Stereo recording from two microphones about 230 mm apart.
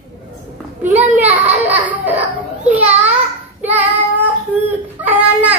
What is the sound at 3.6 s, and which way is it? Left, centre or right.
Child singing, centre.